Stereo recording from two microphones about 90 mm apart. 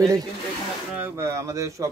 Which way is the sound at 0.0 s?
40° right (ahead or behind).